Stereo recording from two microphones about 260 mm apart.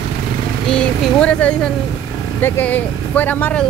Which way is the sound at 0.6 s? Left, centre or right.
Centre.